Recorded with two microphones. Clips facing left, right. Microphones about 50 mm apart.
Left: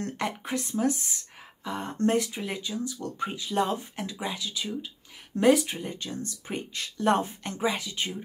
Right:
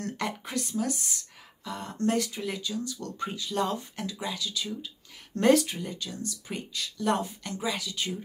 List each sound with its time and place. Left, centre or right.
0.0 s speech: left
5.4 s speech: centre
5.7 s speech: left